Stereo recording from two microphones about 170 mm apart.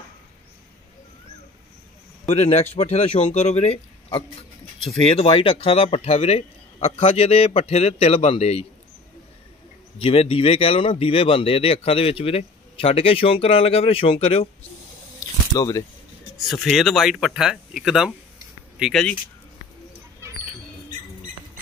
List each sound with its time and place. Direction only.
2.2 s speech: 40° left (ahead or behind)
9.9 s speech: 35° left (ahead or behind)
15.5 s speech: 20° left (ahead or behind)
16.3 s speech: centre (ahead or behind)